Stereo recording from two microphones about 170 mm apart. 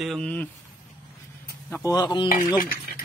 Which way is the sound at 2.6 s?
60° left (ahead or behind).